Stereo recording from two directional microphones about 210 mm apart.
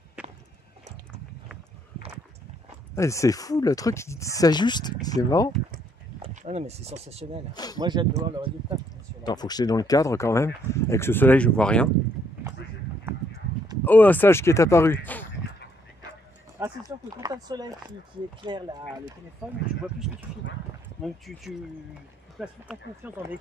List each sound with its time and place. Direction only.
3.0 s speech: 15° left (ahead or behind)
6.2 s speech: 30° right (ahead or behind)
7.5 s speech: 20° left (ahead or behind)
7.8 s speech: 20° right (ahead or behind)
9.2 s speech: 20° left (ahead or behind)
13.8 s speech: 10° left (ahead or behind)
16.6 s a sound: 10° right (ahead or behind)
17.2 s speech: 20° right (ahead or behind)
19.8 s speech: 5° right (ahead or behind)
22.4 s speech: 5° right (ahead or behind)